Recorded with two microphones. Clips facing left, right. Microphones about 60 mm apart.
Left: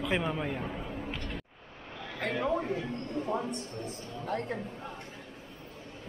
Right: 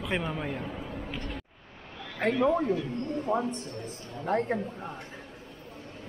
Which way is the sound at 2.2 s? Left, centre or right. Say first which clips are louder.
Right 6 dB; right.